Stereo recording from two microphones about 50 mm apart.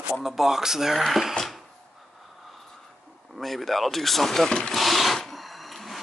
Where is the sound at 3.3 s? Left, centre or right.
Centre.